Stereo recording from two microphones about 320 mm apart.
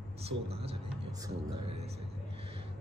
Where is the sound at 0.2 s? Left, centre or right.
Centre.